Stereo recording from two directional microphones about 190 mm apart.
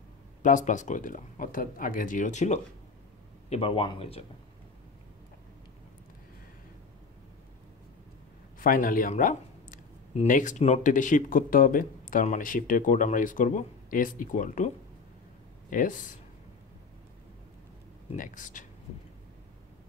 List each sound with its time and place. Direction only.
0.4 s speech: 40° left (ahead or behind)
8.5 s speech: 45° left (ahead or behind)
15.7 s speech: 45° left (ahead or behind)
18.1 s speech: 45° left (ahead or behind)